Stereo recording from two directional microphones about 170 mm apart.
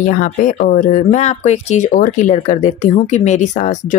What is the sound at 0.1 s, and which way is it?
Speech, 50° left (ahead or behind).